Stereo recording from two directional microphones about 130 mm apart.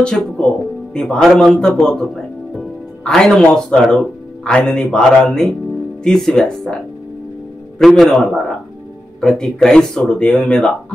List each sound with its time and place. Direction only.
0.0 s speech: 5° left (ahead or behind)
7.8 s speech: centre (ahead or behind)